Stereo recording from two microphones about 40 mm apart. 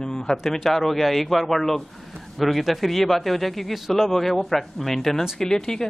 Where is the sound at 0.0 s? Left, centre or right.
Centre.